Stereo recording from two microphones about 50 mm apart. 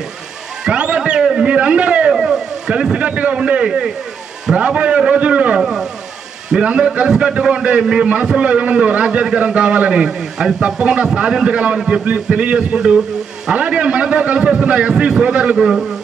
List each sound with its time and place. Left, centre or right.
0.7 s a sound: right
2.1 s vehicle: centre
2.7 s a man's voice: centre
5.6 s a man's voice: centre
6.5 s a man's voice: centre
15.5 s a man's voice: centre